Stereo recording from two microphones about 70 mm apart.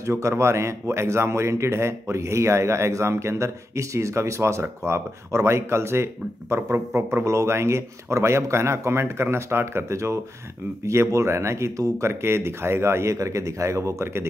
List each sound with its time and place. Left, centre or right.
0.0 s a man's voice: right
12.1 s speech: right